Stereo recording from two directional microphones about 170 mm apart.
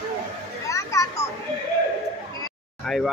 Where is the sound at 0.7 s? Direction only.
20° left (ahead or behind).